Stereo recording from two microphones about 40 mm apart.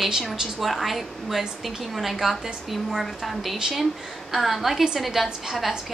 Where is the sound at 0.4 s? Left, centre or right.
Centre.